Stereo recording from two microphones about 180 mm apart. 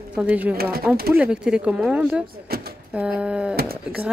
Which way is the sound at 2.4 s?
60° right (ahead or behind).